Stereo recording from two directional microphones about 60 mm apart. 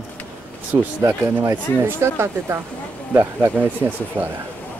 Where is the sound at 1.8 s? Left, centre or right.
Right.